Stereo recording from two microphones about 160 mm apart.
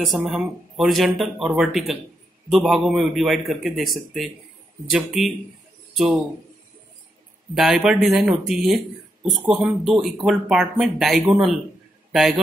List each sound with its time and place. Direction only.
0.0 s a man's voice: centre (ahead or behind)
7.5 s a man's voice: centre (ahead or behind)